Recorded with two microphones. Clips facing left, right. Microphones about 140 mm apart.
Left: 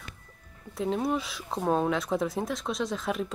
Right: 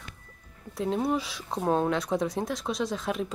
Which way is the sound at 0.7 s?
Centre (ahead or behind).